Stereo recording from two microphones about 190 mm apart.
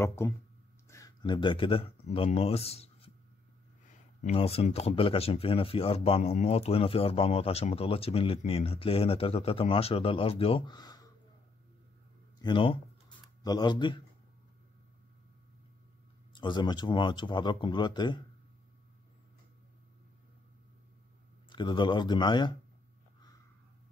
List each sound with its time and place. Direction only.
0.0 s speech: 15° left (ahead or behind); by 3.1 s 30° left (ahead or behind)
4.2 s speech: 30° left (ahead or behind)
12.4 s speech: 25° left (ahead or behind)
16.3 s speech: 25° left (ahead or behind)
21.5 s speech: 25° left (ahead or behind)